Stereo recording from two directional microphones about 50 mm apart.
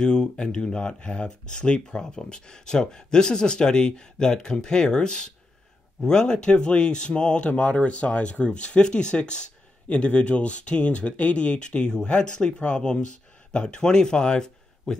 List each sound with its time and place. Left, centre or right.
0.0 s speech: centre